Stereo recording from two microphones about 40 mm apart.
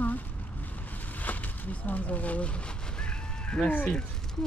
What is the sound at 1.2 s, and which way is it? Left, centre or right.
Speech, left.